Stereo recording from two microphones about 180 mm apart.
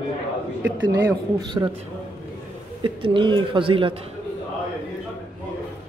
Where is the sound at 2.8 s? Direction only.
30° right (ahead or behind).